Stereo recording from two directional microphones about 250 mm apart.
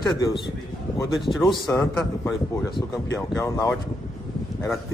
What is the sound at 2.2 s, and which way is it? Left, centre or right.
Speech, centre.